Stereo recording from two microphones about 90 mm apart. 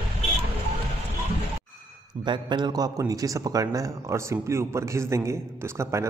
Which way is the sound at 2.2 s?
60° right (ahead or behind).